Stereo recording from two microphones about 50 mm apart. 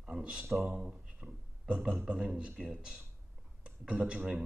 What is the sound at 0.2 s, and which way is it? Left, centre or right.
A man's voice, right.